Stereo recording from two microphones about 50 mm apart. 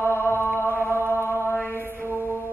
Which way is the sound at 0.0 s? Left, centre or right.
Left.